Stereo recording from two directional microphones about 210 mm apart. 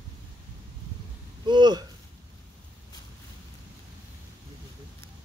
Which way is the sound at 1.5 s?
20° right (ahead or behind).